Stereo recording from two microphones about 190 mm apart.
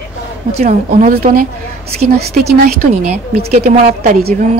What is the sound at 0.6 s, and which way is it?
A woman's voice, 40° right (ahead or behind).